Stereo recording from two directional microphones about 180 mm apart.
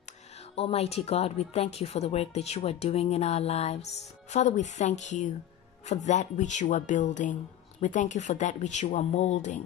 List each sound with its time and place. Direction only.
0.6 s speech: 35° left (ahead or behind)